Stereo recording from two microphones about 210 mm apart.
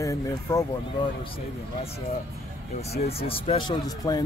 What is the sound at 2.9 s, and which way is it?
Speech, 30° left (ahead or behind).